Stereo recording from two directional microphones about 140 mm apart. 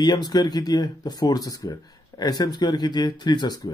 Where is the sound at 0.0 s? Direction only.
30° left (ahead or behind).